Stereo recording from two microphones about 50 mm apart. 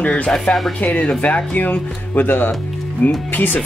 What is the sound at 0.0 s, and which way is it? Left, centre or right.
Speech, left.